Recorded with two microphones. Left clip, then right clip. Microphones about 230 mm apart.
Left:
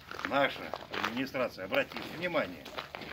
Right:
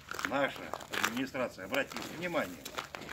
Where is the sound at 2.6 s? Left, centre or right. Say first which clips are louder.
Even; right.